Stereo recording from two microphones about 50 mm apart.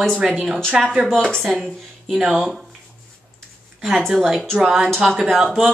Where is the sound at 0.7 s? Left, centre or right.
Centre.